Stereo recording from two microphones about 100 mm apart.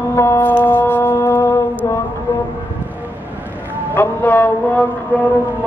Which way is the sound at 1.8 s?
35° left (ahead or behind).